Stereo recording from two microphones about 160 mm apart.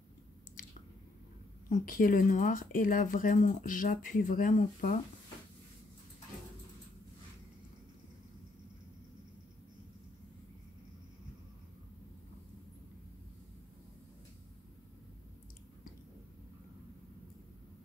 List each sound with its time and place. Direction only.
1.7 s speech: 60° left (ahead or behind)